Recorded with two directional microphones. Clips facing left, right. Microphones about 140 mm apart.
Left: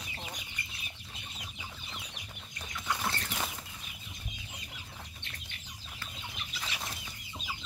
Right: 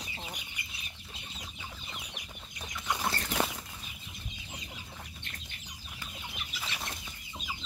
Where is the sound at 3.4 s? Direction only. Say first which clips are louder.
Right 8 dB; 65° right (ahead or behind).